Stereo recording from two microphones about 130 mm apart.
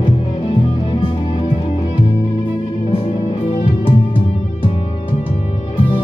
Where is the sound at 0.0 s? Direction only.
40° left (ahead or behind).